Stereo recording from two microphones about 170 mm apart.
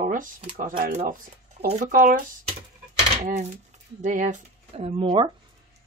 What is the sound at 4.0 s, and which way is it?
Speech, 50° right (ahead or behind).